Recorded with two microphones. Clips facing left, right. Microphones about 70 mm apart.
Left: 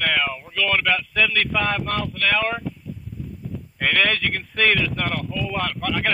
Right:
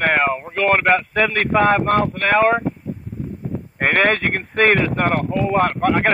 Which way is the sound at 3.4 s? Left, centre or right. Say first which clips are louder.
Right 4 dB; right.